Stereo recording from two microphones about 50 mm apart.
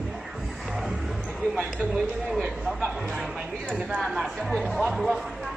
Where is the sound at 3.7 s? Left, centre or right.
Right.